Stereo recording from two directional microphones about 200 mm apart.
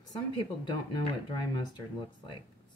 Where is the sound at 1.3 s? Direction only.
20° left (ahead or behind).